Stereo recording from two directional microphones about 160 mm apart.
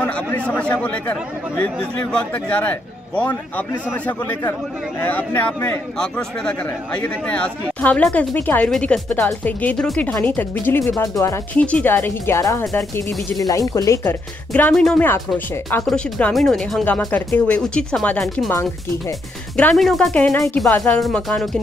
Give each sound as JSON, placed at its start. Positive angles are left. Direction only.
{"t": 0.0, "sound": "speech", "side_deg": 10}
{"t": 11.5, "sound": "speech", "side_deg": 10}
{"t": 14.5, "sound": "speech", "side_deg": 5}
{"t": 18.5, "sound": "speech", "side_deg": 20}
{"t": 19.5, "sound": "speech", "side_deg": 5}